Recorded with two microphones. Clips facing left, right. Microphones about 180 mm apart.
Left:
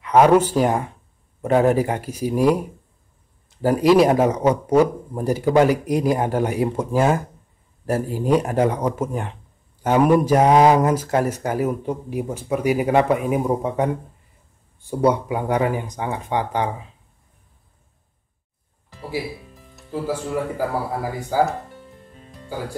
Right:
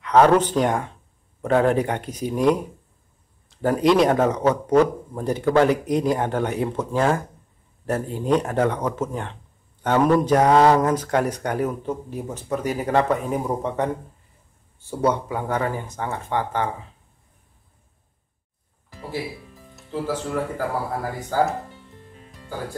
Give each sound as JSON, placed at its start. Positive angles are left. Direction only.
{"t": 0.0, "sound": "speech", "side_deg": 10}
{"t": 19.7, "sound": "speech", "side_deg": 10}